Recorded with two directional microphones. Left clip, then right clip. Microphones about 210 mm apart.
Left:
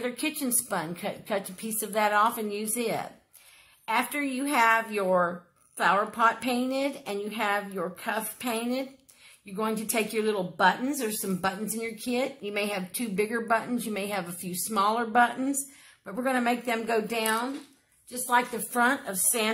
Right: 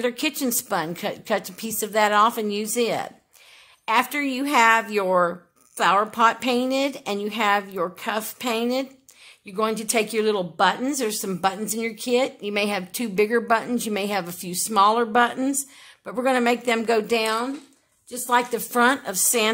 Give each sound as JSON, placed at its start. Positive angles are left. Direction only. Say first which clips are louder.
{"t": 0.0, "sound": "speech", "louder": "right 7 dB", "side_deg": -40}